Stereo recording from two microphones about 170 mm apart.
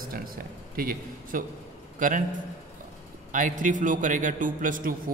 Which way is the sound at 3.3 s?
50° right (ahead or behind).